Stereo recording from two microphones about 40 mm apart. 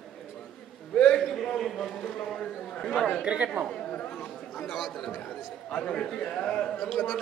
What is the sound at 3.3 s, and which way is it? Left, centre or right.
Speech, right.